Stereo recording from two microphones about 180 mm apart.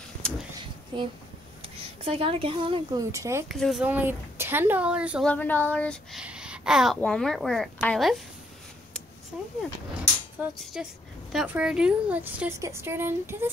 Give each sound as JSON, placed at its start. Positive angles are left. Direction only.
{"t": 0.2, "sound": "a sound", "side_deg": 5}
{"t": 0.9, "sound": "speech", "side_deg": -25}
{"t": 3.4, "sound": "a woman's voice", "side_deg": 0}
{"t": 5.2, "sound": "child singing", "side_deg": 10}
{"t": 6.1, "sound": "a sound", "side_deg": -5}
{"t": 7.0, "sound": "speech", "side_deg": 5}
{"t": 10.6, "sound": "a woman's voice", "side_deg": 0}